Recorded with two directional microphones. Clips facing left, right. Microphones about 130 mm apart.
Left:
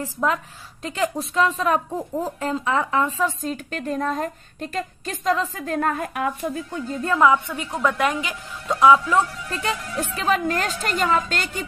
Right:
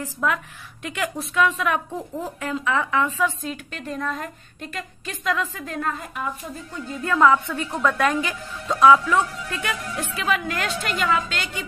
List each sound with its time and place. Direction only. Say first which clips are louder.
0.0 s a woman's voice: left 2 dB; 30° left (ahead or behind)
2.0 s a woman's voice: left 4 dB; 10° left (ahead or behind)
2.4 s a woman's voice: even; 35° left (ahead or behind); by 6.8 s 60° left (ahead or behind)
7.2 s a woman's voice: right 1 dB; 15° left (ahead or behind)
9.5 s a woman's voice: left 2 dB; 35° left (ahead or behind)